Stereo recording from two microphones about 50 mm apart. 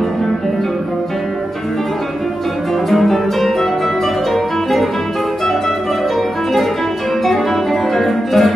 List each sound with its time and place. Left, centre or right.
2.9 s music: centre
7.9 s music: centre